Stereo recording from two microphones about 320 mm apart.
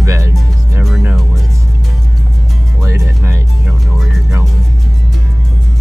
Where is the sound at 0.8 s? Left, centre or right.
Centre.